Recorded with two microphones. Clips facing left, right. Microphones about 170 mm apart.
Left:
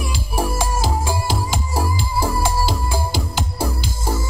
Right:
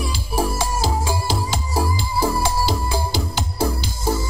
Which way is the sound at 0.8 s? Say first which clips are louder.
Even; 10° left (ahead or behind).